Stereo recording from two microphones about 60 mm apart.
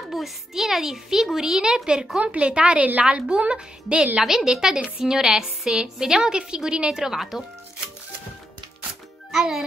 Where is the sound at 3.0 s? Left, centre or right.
Centre.